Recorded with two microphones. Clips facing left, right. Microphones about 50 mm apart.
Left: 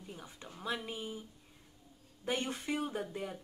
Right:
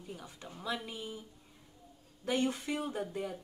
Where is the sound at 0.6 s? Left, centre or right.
Centre.